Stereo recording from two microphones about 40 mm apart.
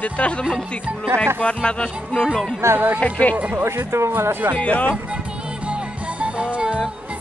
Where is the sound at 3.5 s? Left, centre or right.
Right.